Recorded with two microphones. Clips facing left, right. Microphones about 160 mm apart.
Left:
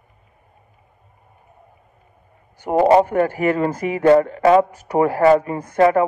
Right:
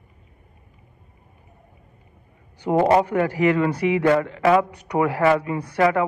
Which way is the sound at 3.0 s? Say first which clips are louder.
Left 1 dB; 45° left (ahead or behind).